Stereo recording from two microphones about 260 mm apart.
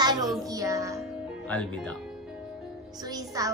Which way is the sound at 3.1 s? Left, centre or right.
Centre.